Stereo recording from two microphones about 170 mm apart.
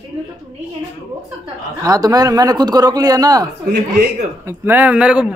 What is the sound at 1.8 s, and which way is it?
A man's voice, 20° right (ahead or behind).